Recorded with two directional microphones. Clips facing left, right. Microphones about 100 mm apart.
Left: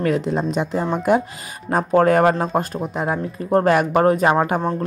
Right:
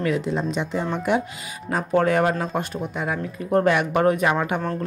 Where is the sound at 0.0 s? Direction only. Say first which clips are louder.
Left 3 dB; 40° left (ahead or behind).